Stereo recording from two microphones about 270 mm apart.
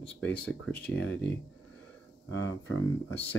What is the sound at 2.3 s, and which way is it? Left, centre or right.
Speech, centre.